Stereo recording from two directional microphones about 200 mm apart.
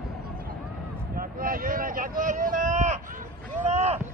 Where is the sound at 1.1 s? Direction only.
45° right (ahead or behind).